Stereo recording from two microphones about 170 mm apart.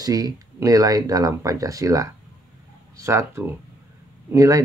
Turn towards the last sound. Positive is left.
turn(degrees=-20)  # may be behind; listen again after turning